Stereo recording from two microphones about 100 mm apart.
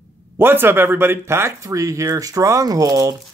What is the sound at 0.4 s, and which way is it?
Speech, 20° right (ahead or behind).